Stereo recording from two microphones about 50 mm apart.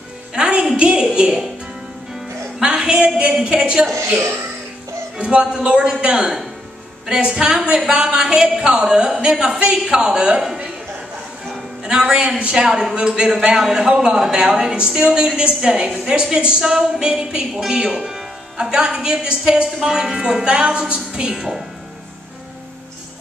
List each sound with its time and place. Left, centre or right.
0.3 s music: centre
0.7 s speech: centre
2.6 s a woman's voice: centre
5.1 s speech: centre
11.4 s music: centre
12.3 s speech: right
12.5 s speech: centre
12.9 s speech: centre
13.6 s speech: centre